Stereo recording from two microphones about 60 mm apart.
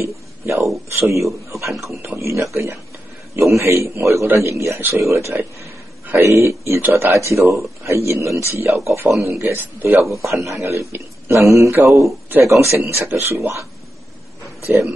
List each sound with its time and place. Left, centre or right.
0.0 s a sound: right
0.9 s speech: right
1.5 s a sound: right
2.1 s speech: right
4.7 s a man's voice: right
5.0 s speech: right
9.4 s a man's voice: right
10.2 s speech: right
10.7 s speech: right